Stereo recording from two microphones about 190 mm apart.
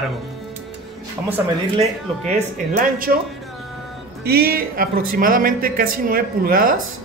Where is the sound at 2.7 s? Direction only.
50° right (ahead or behind).